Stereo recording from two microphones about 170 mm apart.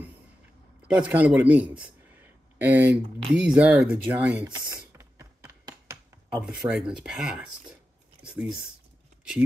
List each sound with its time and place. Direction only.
0.8 s a man's voice: 10° right (ahead or behind)
4.9 s typing: 15° right (ahead or behind)
6.3 s speech: 5° right (ahead or behind)